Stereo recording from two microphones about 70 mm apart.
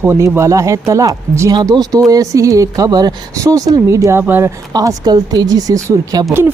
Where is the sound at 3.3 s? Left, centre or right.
Right.